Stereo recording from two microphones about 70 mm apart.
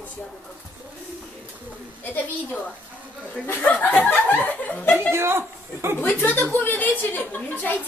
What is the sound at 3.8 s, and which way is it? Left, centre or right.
Snicker, left.